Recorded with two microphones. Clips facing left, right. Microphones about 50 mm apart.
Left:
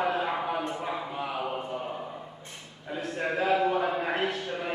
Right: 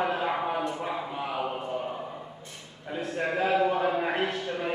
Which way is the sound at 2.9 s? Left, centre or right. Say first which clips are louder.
Right 1 dB; centre.